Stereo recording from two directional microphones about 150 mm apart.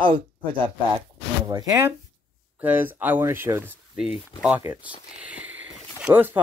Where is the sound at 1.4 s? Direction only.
20° right (ahead or behind).